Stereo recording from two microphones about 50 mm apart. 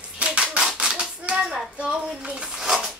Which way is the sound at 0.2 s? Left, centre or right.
Right.